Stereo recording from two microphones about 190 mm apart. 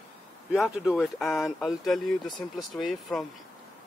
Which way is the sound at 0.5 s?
5° right (ahead or behind).